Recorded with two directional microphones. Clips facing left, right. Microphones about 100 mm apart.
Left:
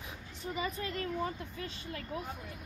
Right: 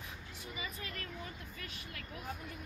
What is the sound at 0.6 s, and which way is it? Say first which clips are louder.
Speech: left 9 dB; 35° left (ahead or behind).